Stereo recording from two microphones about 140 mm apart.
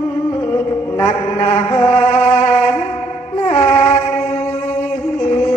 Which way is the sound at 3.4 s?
50° left (ahead or behind).